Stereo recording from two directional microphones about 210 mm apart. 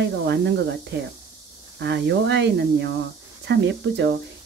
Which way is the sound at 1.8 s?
55° right (ahead or behind).